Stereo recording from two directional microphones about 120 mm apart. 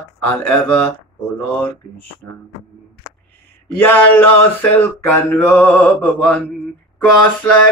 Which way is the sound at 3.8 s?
15° left (ahead or behind).